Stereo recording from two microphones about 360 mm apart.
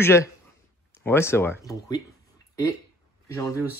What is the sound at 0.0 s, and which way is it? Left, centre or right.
Speech, centre.